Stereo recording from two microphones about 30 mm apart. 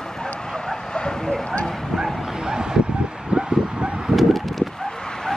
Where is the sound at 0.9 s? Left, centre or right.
Left.